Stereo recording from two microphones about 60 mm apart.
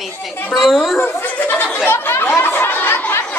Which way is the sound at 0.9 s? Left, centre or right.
Left.